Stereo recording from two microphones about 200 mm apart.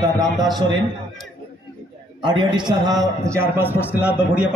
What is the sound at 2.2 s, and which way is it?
A man's voice, 25° right (ahead or behind).